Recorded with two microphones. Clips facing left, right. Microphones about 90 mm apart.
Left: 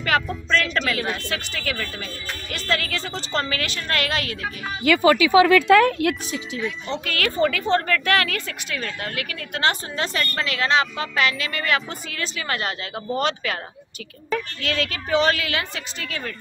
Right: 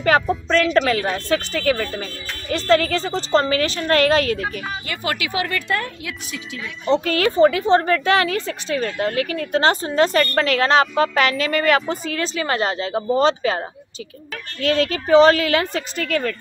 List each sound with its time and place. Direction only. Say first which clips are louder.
0.0 s speech: right 5 dB; 35° right (ahead or behind)
5.7 s speech: left 10 dB; 85° left
6.9 s speech: right 12 dB; 30° right (ahead or behind)
14.6 s speech: right 7 dB; 35° right (ahead or behind)